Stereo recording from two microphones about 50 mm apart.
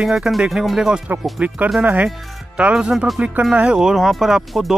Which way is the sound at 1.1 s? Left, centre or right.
Right.